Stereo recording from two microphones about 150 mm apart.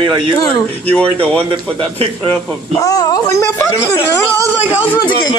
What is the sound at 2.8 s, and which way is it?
Speech, 25° left (ahead or behind).